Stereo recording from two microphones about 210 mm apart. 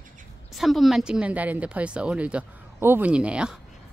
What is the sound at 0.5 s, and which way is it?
Speech, centre (ahead or behind).